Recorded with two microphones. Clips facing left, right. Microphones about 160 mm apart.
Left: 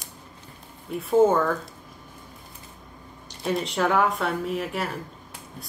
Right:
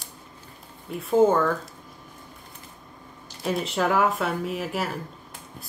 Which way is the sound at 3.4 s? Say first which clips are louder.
Even; centre (ahead or behind).